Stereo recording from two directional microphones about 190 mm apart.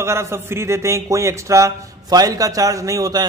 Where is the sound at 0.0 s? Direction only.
15° right (ahead or behind).